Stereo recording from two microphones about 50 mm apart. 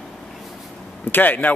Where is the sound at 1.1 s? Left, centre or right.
Left.